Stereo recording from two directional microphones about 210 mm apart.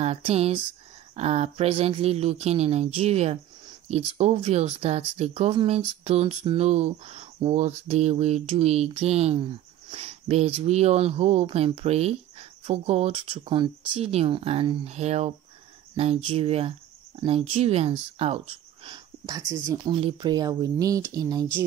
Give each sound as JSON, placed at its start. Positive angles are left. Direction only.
{"t": 0.0, "sound": "speech", "side_deg": -30}
{"t": 18.9, "sound": "speech", "side_deg": -20}